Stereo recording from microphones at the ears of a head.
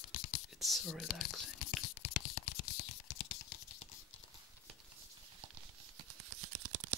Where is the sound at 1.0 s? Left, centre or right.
Left.